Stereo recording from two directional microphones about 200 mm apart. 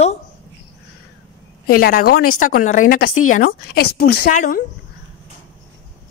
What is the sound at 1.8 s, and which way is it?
Speech, 50° left (ahead or behind).